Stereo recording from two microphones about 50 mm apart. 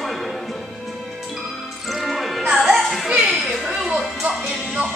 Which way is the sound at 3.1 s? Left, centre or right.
Centre.